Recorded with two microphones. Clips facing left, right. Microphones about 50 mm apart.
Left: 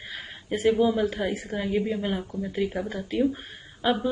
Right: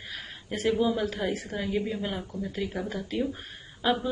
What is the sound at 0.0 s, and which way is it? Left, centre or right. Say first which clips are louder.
A woman's voice: left 2 dB; centre.